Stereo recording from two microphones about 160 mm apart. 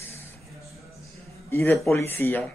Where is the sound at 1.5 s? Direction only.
15° left (ahead or behind).